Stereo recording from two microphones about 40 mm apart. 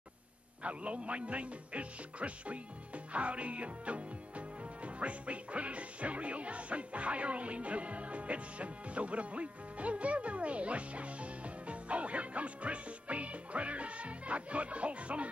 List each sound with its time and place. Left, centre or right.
0.7 s speech: right
3.1 s music: right